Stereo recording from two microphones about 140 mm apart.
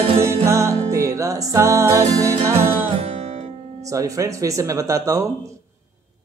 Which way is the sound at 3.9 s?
25° right (ahead or behind).